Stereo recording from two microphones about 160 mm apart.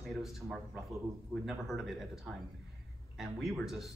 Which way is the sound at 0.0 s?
Centre (ahead or behind).